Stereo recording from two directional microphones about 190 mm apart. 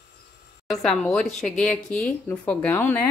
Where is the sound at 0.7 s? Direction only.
Centre (ahead or behind).